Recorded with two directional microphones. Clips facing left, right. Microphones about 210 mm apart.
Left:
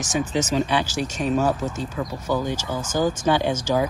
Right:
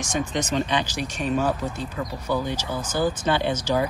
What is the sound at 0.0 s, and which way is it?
Speech, 5° left (ahead or behind).